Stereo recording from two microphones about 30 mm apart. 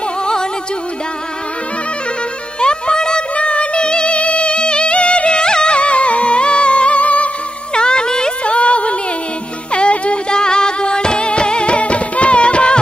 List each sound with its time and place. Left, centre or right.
2.6 s music: left
7.7 s music: left
8.5 s a sound: left
9.7 s music: left
10.4 s music: left